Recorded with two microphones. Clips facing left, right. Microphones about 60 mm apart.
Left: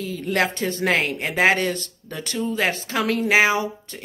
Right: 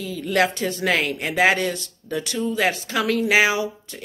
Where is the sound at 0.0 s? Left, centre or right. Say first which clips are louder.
Right 2 dB; left.